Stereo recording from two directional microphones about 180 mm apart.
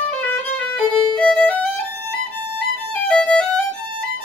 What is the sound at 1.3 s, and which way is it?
Violin, 5° left (ahead or behind).